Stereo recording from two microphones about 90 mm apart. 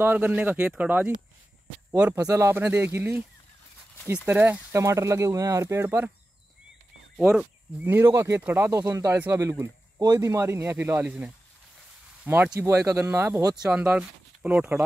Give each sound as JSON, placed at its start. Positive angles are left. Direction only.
{"t": 0.0, "sound": "speech", "side_deg": -20}
{"t": 2.1, "sound": "speech", "side_deg": -35}
{"t": 2.6, "sound": "speech", "side_deg": -20}
{"t": 4.3, "sound": "speech", "side_deg": -20}
{"t": 4.7, "sound": "speech", "side_deg": -35}
{"t": 7.2, "sound": "speech", "side_deg": -5}
{"t": 7.8, "sound": "speech", "side_deg": -30}
{"t": 11.1, "sound": "speech", "side_deg": -15}
{"t": 12.5, "sound": "speech", "side_deg": -35}
{"t": 13.6, "sound": "speech", "side_deg": -10}